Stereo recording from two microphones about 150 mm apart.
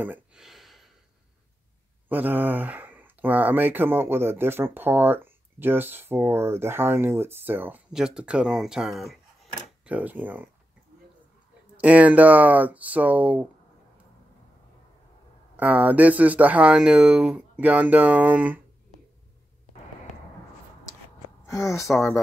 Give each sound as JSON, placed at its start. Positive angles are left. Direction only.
{"t": 0.0, "sound": "a sound", "side_deg": -10}
{"t": 2.0, "sound": "speech", "side_deg": -10}
{"t": 11.7, "sound": "speech", "side_deg": -10}
{"t": 15.5, "sound": "speech", "side_deg": -10}
{"t": 21.5, "sound": "speech", "side_deg": 20}
{"t": 21.8, "sound": "speech", "side_deg": 0}